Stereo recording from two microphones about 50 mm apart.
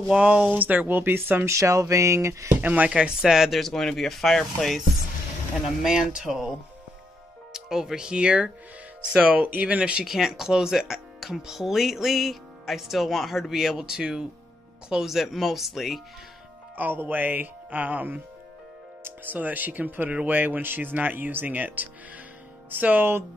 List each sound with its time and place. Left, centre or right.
0.1 s speech: centre
0.6 s speech: right
1.4 s speech: right
2.5 s speech: right
2.9 s speech: centre
3.5 s speech: centre
7.5 s speech: centre
10.0 s speech: centre
15.1 s speech: centre
16.7 s speech: right
19.2 s speech: right